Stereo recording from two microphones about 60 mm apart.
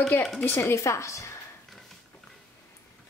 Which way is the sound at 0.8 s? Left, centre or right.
Left.